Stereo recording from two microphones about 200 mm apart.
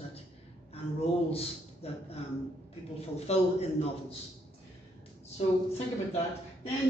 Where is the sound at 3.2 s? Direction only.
30° left (ahead or behind).